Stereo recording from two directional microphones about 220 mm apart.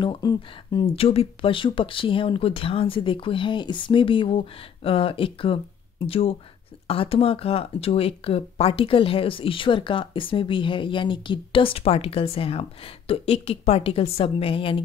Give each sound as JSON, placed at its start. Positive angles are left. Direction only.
{"t": 0.0, "sound": "speech", "side_deg": 20}